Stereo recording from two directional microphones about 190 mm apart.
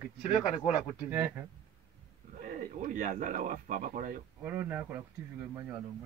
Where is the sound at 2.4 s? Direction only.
40° right (ahead or behind).